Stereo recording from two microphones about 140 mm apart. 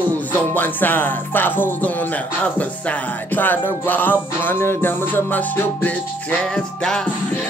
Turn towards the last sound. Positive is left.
turn(degrees=5)  # may be behind; listen again after turning